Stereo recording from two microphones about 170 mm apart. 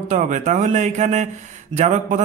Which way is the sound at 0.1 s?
45° right (ahead or behind).